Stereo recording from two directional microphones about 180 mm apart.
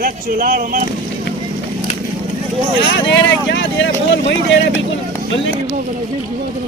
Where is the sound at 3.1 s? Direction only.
80° left.